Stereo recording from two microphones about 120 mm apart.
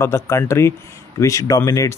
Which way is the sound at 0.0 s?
20° left (ahead or behind).